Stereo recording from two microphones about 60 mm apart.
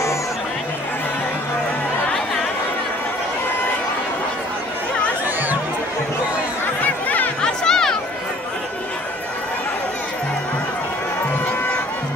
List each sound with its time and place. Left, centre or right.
6.8 s music: left
7.4 s music: centre